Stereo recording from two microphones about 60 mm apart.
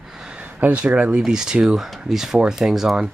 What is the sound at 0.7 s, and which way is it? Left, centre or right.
Speech, right.